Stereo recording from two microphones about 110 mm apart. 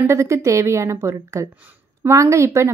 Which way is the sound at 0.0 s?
25° right (ahead or behind).